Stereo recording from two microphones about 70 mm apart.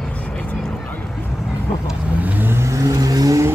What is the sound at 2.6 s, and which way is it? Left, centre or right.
Vehicle, right.